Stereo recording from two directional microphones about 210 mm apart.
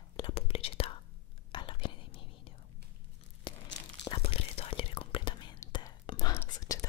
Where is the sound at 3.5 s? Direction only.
25° left (ahead or behind).